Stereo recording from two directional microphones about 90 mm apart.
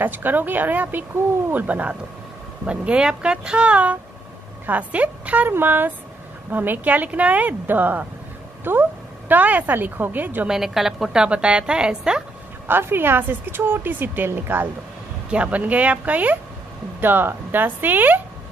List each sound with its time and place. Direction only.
0.0 s a woman's voice: 20° right (ahead or behind)
10.5 s a woman's voice: 5° right (ahead or behind)
12.6 s a woman's voice: 25° right (ahead or behind)